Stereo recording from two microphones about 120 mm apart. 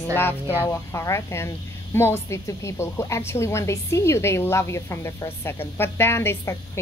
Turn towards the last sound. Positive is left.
turn(degrees=20)  # may be behind; listen again after turning